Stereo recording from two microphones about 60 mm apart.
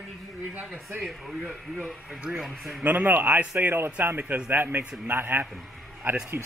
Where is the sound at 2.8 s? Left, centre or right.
Right.